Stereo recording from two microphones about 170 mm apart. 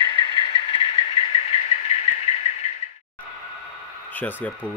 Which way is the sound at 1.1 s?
35° left (ahead or behind).